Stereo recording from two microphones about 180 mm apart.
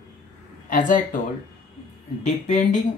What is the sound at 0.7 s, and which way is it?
Speech, 45° left (ahead or behind).